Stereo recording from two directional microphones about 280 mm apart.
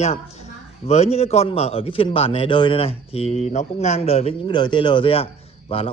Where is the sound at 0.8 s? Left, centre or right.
Left.